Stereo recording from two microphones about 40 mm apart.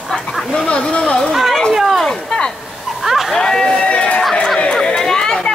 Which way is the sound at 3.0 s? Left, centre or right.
Centre.